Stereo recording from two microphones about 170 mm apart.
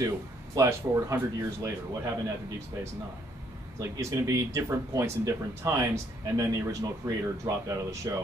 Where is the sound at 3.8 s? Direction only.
15° right (ahead or behind).